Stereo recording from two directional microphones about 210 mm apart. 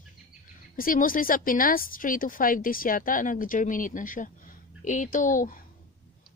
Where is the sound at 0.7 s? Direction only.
40° left (ahead or behind).